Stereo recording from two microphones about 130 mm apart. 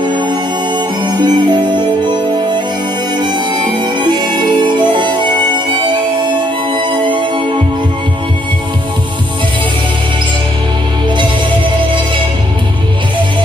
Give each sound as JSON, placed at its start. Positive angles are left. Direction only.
{"t": 1.1, "sound": "music", "side_deg": -35}